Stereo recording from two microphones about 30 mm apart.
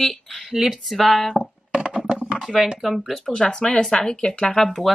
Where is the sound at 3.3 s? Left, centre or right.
Left.